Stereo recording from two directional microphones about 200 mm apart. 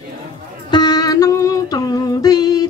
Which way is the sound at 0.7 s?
20° left (ahead or behind).